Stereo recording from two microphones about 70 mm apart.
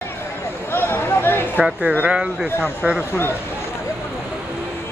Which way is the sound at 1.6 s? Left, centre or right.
Right.